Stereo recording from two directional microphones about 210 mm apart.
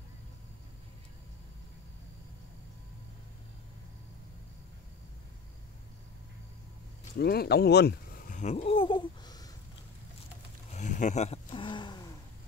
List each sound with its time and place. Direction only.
7.2 s speech: 50° left (ahead or behind)
8.4 s a sound: 30° left (ahead or behind)
10.7 s roaring cats: 35° left (ahead or behind); by 12.1 s 20° left (ahead or behind)